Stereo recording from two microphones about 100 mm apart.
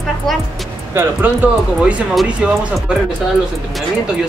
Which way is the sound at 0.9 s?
20° right (ahead or behind).